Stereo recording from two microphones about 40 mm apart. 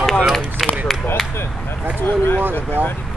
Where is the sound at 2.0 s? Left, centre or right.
Left.